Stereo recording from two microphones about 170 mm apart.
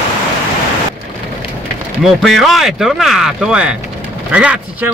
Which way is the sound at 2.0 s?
Centre (ahead or behind).